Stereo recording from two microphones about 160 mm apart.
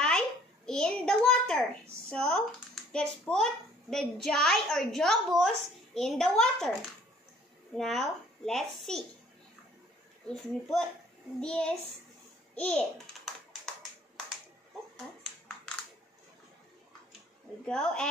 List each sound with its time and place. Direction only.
0.7 s a sound: 5° left (ahead or behind)
2.0 s a child's voice: 5° left (ahead or behind)
7.7 s a child's voice: centre (ahead or behind)
10.2 s a child's voice: 5° left (ahead or behind)
12.5 s a sound: 5° left (ahead or behind)
17.6 s a child's voice: 5° left (ahead or behind)